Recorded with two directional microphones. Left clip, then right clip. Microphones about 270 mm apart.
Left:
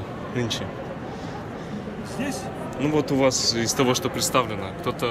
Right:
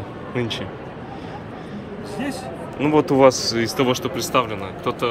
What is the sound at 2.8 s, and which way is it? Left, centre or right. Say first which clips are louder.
Speech: right 7 dB; centre.